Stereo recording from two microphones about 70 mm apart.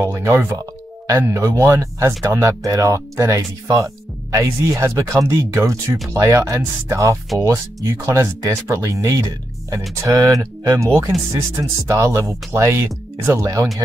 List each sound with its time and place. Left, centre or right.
0.0 s speech: right
5.6 s speech: right
10.2 s speech: right